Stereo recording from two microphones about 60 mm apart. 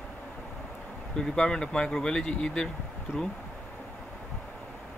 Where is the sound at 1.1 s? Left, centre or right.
Centre.